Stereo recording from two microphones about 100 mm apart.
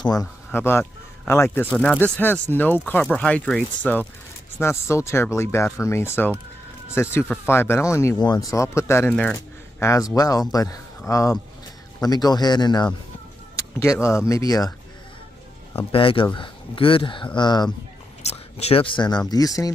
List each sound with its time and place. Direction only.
0.0 s speech: 40° left (ahead or behind)
0.5 s speech: 20° left (ahead or behind)
3.0 s speech: 10° left (ahead or behind)
4.6 s speech: 25° left (ahead or behind); by 12.9 s 45° left (ahead or behind)
13.6 s speech: 30° left (ahead or behind)
15.9 s speech: 60° left (ahead or behind); by 17.6 s 45° left (ahead or behind)
18.2 s speech: 90° left; by 19.0 s 65° left (ahead or behind)
19.0 s speech: 40° left (ahead or behind)